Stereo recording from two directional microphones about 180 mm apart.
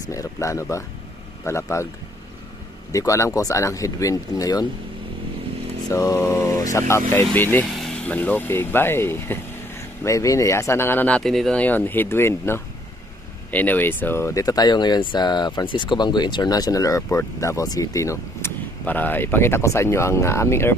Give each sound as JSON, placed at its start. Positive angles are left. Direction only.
{"t": 0.1, "sound": "speech", "side_deg": 15}
{"t": 2.9, "sound": "speech", "side_deg": 20}
{"t": 5.9, "sound": "speech", "side_deg": 20}